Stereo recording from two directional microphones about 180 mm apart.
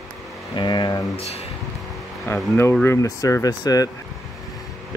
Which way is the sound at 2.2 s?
15° left (ahead or behind).